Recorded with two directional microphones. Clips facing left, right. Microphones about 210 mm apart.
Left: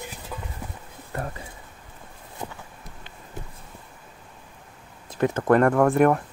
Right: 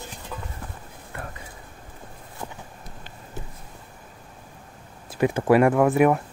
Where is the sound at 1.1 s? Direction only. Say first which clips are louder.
Left 6 dB; 40° left (ahead or behind).